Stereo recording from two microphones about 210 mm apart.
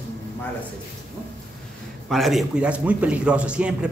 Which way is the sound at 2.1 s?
Centre (ahead or behind).